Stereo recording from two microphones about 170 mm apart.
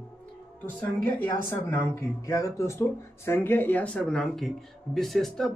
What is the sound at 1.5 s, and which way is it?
Speech, 20° left (ahead or behind).